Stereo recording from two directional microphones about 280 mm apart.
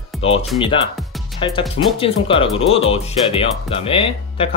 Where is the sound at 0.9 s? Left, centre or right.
Centre.